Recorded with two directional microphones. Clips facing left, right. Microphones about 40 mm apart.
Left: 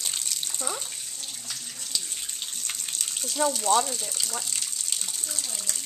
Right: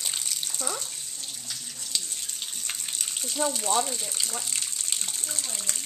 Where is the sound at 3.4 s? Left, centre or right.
Left.